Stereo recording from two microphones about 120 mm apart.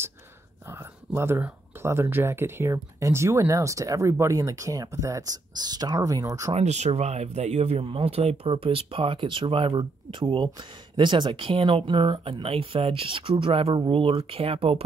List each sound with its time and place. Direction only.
0.7 s speech: 20° right (ahead or behind)
6.5 s speech: 70° right (ahead or behind); by 14.8 s 55° right (ahead or behind)